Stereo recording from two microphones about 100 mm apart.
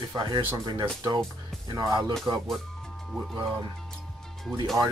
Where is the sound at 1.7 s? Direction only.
40° right (ahead or behind).